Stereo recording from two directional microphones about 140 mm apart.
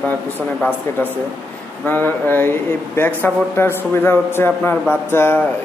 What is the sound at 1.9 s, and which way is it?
A man's voice, 15° left (ahead or behind).